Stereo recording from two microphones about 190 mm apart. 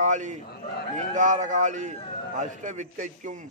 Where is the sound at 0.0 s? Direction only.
40° right (ahead or behind).